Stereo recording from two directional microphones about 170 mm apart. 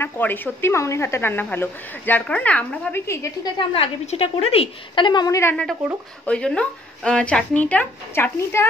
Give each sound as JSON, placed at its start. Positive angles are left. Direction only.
{"t": 0.0, "sound": "a woman's voice", "side_deg": 10}
{"t": 3.5, "sound": "a woman's voice", "side_deg": 35}